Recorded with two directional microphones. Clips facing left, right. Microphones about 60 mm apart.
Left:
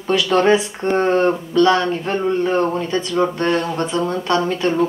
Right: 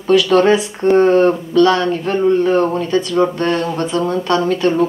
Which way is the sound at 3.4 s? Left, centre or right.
Left.